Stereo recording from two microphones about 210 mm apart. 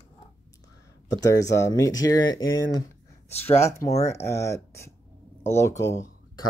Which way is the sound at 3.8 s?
15° left (ahead or behind).